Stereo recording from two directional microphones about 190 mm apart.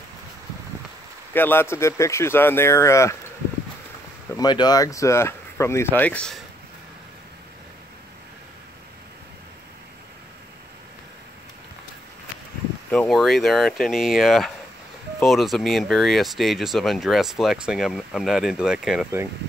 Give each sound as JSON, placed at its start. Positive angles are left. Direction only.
{"t": 1.3, "sound": "speech", "side_deg": 10}
{"t": 4.4, "sound": "speech", "side_deg": 20}
{"t": 12.9, "sound": "speech", "side_deg": 0}